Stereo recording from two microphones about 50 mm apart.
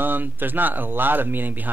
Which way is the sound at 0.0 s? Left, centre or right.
Right.